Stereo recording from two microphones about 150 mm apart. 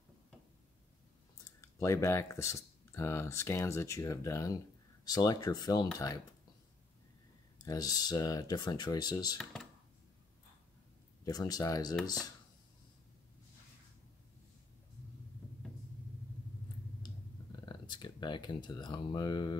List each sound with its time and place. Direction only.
1.6 s speech: 20° left (ahead or behind)
7.6 s speech: 25° left (ahead or behind)
9.4 s speech: 5° left (ahead or behind)
11.2 s speech: 25° left (ahead or behind)
17.6 s speech: 30° left (ahead or behind)